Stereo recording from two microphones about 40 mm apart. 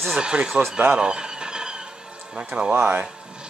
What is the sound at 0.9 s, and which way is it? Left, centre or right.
Squeal, right.